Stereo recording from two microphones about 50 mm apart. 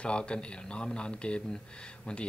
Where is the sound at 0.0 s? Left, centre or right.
Left.